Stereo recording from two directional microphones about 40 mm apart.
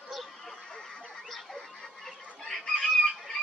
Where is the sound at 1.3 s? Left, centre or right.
Centre.